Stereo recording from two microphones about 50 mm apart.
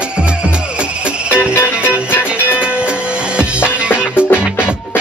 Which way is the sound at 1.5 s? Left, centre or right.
Left.